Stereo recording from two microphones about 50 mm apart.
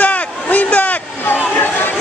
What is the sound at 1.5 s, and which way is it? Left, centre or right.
Chatter, left.